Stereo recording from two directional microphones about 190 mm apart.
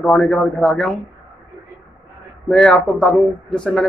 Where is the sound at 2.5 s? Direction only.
5° left (ahead or behind).